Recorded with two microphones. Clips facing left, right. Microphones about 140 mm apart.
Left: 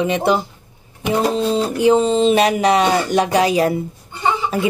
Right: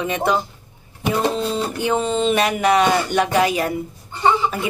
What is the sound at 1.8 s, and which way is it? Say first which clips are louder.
Speech: left 6 dB; 35° left (ahead or behind).